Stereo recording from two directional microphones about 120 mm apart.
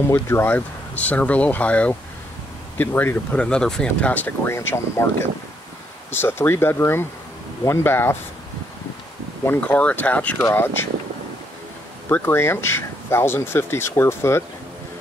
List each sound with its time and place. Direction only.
0.1 s speech: 20° left (ahead or behind)
9.5 s speech: 15° left (ahead or behind)
12.1 s speech: 20° left (ahead or behind)